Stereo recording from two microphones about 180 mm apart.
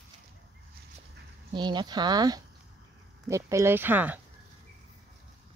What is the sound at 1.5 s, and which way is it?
Speech, 25° right (ahead or behind).